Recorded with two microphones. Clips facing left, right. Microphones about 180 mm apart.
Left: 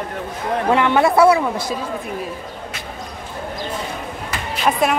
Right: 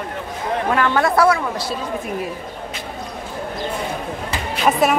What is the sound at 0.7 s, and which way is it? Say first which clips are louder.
Speech: left 3 dB; 20° left (ahead or behind).